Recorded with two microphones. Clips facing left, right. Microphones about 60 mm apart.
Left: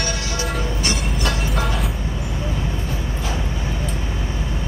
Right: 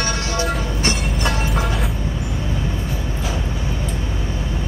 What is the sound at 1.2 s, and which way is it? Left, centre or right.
Music, centre.